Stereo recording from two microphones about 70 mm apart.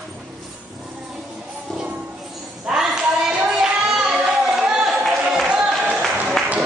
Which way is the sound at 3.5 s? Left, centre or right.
Centre.